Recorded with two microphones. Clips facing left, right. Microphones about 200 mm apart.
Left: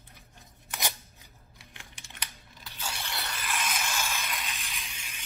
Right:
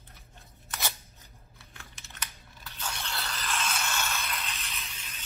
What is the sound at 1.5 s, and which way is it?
Typing, 15° left (ahead or behind).